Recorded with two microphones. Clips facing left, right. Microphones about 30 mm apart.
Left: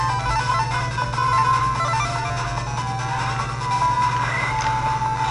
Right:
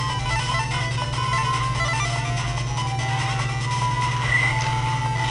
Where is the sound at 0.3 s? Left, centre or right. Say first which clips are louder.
Left 4 dB; right.